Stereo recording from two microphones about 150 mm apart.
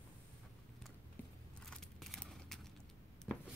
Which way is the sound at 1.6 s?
5° left (ahead or behind).